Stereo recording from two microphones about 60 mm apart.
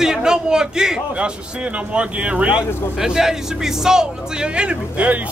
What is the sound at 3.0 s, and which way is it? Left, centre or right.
Speech, centre.